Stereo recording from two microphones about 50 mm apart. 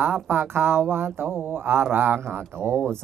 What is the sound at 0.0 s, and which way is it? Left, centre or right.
Speech, right.